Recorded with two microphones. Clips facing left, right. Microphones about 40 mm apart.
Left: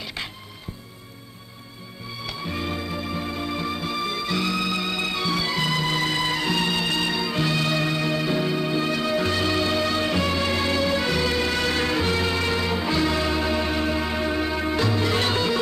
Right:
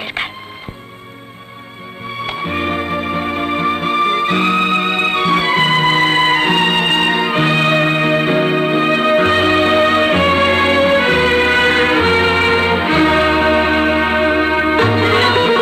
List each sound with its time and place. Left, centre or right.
0.0 s music: right
2.1 s music: right